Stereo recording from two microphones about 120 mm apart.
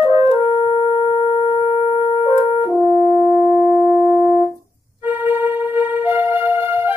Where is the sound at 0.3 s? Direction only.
50° left (ahead or behind).